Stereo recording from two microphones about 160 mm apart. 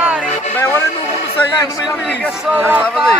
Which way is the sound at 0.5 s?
15° left (ahead or behind).